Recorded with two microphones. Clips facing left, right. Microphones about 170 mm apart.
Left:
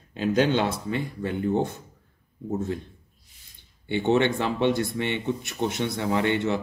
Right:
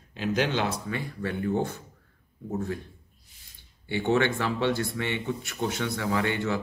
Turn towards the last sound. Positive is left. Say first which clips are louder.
# left 3 dB
turn(degrees=20)  # may be behind; listen again after turning